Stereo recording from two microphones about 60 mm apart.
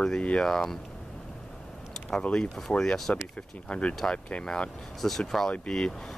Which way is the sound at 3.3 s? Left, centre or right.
Centre.